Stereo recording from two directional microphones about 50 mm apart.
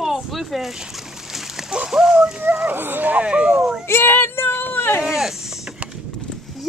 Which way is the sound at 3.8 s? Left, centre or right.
Left.